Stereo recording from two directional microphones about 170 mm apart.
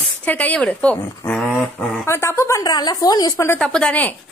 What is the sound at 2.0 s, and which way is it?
Speech, 15° left (ahead or behind).